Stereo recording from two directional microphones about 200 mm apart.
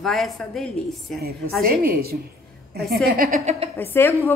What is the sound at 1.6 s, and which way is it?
Speech, 50° right (ahead or behind).